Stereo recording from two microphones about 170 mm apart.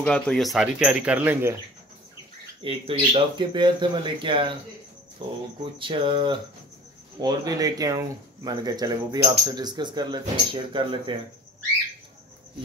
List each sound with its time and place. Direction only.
0.0 s speech: 5° left (ahead or behind); by 1.6 s 15° right (ahead or behind)
2.6 s speech: 30° right (ahead or behind)
5.6 s speech: 30° right (ahead or behind)